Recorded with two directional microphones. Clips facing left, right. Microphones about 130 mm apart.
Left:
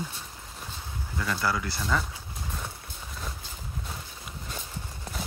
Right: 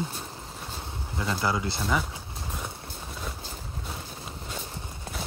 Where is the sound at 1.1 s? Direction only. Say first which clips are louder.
Right 1 dB; 25° right (ahead or behind).